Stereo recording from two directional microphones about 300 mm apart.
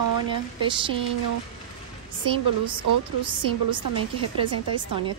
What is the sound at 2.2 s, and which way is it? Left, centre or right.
A woman's voice, centre.